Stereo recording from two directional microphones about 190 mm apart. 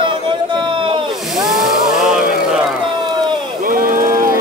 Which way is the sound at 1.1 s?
Centre (ahead or behind).